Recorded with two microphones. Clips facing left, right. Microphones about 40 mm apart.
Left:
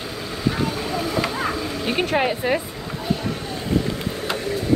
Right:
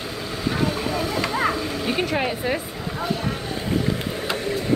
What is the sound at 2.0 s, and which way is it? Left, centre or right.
Speech, left.